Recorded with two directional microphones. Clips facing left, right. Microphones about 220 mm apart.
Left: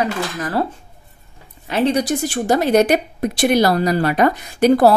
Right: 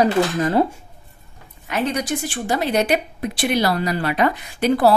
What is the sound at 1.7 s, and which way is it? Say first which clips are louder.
Speech: left 5 dB; 30° left (ahead or behind).